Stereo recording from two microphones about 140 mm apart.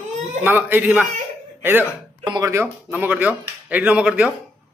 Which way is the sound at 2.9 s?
10° right (ahead or behind).